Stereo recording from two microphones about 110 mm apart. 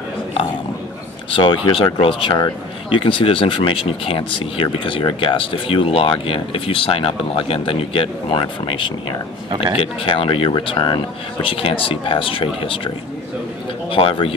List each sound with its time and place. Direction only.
1.3 s speech: 50° left (ahead or behind)